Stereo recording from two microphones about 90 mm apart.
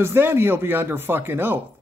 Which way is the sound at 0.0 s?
25° right (ahead or behind).